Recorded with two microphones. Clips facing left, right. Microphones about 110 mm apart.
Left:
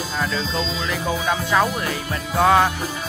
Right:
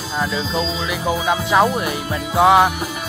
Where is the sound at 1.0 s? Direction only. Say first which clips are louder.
Right 4 dB; 15° right (ahead or behind).